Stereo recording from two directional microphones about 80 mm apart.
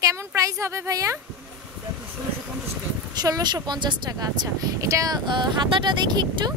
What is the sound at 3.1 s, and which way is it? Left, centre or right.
Speech, right.